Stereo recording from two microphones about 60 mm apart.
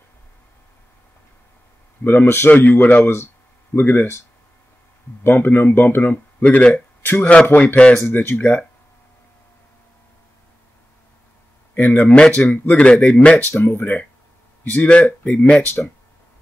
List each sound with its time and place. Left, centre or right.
2.0 s speech: left
2.5 s speech: left
5.2 s speech: left
7.8 s speech: centre
8.1 s speech: left
8.4 s speech: left
11.7 s speech: left
12.1 s speech: centre
12.4 s speech: left
13.5 s speech: left